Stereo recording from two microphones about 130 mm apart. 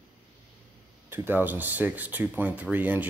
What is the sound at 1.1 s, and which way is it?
Speech, 15° right (ahead or behind).